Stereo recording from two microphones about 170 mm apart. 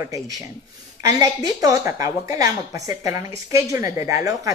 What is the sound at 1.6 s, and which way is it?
A woman's voice, 20° right (ahead or behind).